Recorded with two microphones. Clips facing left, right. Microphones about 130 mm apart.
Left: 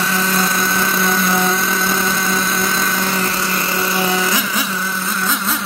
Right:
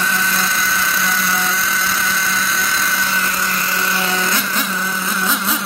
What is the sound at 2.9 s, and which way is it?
Vehicle, 40° left (ahead or behind).